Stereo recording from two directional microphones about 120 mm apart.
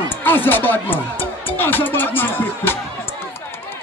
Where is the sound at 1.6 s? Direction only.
15° left (ahead or behind).